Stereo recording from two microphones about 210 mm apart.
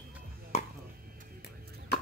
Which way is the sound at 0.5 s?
30° left (ahead or behind).